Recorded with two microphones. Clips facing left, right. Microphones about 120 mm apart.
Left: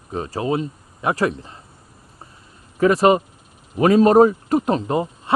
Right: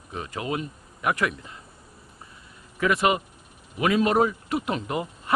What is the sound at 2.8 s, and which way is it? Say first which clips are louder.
Speech: left 8 dB; 35° left (ahead or behind).